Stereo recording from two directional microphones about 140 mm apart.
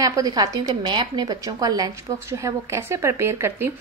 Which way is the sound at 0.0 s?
25° right (ahead or behind).